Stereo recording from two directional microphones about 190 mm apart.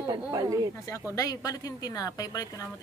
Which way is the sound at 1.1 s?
20° left (ahead or behind).